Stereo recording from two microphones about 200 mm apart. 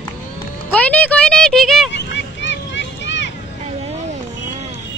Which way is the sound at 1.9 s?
65° left (ahead or behind).